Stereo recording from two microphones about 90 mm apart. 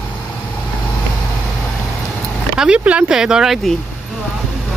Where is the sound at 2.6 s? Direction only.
10° right (ahead or behind).